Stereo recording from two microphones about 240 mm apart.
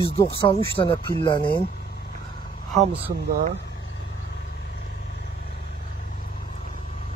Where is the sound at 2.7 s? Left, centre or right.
Right.